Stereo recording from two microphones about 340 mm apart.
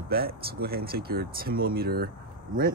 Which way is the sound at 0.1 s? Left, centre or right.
Right.